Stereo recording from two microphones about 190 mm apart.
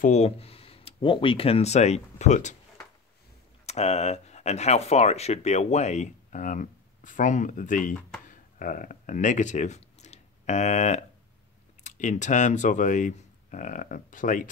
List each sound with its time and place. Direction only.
0.0 s speech: 35° left (ahead or behind)
3.6 s speech: 35° left (ahead or behind)